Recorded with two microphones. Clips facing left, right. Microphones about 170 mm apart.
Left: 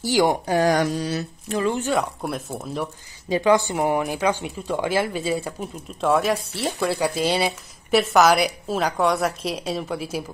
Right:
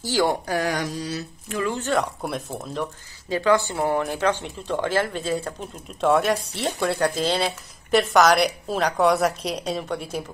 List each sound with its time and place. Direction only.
0.0 s speech: 15° left (ahead or behind)
0.7 s mantra: 60° left (ahead or behind)
1.7 s speech: 10° left (ahead or behind)